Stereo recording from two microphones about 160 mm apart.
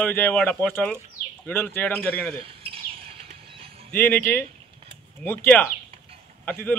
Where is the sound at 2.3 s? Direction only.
35° right (ahead or behind).